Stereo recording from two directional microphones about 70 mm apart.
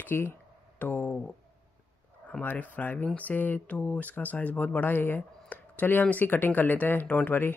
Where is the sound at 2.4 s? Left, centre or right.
Left.